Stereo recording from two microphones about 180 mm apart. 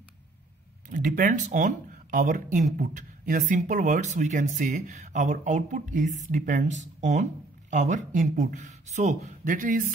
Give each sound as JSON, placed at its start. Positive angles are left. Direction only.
{"t": 0.8, "sound": "speech", "side_deg": -50}